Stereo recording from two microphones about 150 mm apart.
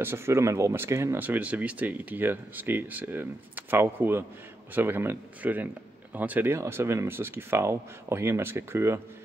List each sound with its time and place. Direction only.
0.0 s speech: 15° right (ahead or behind)